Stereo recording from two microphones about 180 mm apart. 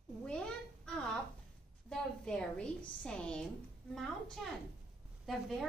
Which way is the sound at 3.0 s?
5° left (ahead or behind).